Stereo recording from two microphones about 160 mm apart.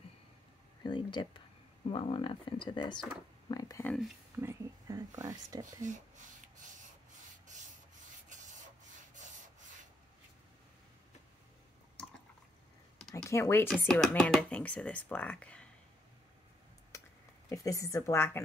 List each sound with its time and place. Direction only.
0.8 s speech: 30° left (ahead or behind)
3.8 s speech: 5° left (ahead or behind)
4.4 s speech: 15° right (ahead or behind)
5.8 s speech: 50° right (ahead or behind)
7.5 s rub: 50° right (ahead or behind)
13.1 s speech: 15° left (ahead or behind)
17.5 s speech: 20° left (ahead or behind)